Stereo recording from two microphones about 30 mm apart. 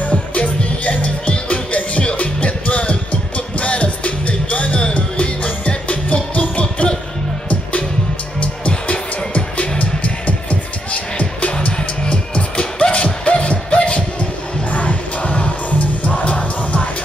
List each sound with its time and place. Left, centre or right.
0.0 s music: left
8.4 s music: left